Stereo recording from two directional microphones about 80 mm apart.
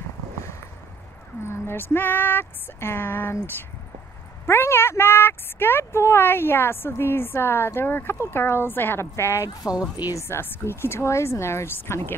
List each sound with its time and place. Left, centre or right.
1.4 s speech: left
4.5 s speech: left
9.5 s speech: left
10.1 s speech: left